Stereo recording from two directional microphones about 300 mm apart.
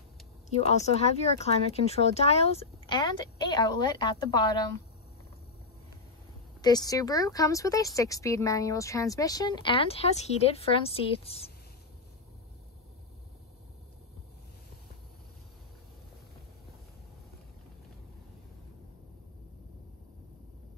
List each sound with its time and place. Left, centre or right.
0.6 s speech: left
6.6 s speech: centre